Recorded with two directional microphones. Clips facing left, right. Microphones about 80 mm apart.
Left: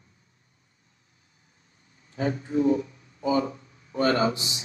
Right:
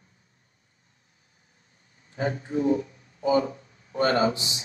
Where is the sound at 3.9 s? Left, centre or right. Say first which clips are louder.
Even; right.